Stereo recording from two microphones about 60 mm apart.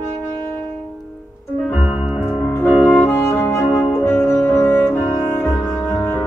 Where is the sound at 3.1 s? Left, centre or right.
Left.